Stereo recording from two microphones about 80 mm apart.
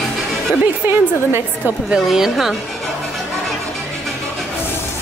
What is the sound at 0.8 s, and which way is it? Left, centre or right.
Speech, right.